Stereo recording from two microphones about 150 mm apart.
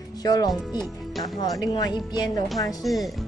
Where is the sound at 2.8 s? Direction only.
Centre (ahead or behind).